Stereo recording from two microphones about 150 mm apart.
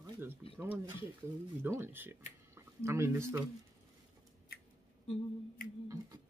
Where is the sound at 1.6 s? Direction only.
15° right (ahead or behind).